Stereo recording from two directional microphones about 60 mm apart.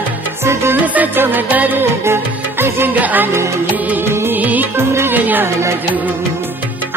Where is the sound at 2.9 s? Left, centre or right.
Right.